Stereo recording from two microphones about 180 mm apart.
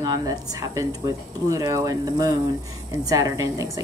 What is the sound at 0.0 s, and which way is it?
A woman's voice, 20° right (ahead or behind).